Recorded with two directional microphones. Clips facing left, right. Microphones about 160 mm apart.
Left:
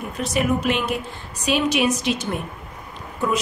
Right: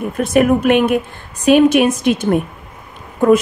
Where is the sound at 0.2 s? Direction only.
55° right (ahead or behind).